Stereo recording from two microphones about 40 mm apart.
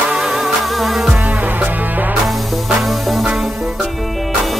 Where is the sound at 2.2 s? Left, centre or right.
Centre.